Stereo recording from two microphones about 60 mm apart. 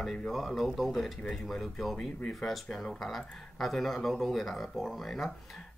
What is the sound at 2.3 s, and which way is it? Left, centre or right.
Speech, centre.